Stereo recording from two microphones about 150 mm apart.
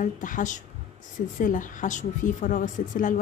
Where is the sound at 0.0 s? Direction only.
60° left (ahead or behind).